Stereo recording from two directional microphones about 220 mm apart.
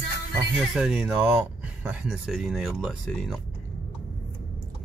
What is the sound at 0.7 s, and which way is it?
Speech, 5° right (ahead or behind).